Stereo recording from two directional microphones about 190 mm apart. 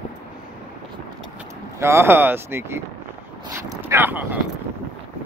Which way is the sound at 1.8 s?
10° right (ahead or behind).